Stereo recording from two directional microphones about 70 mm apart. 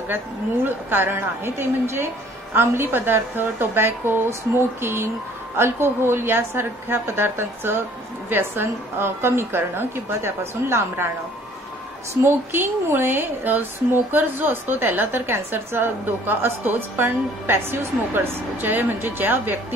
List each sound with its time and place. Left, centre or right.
0.7 s speech: right
12.1 s speech: right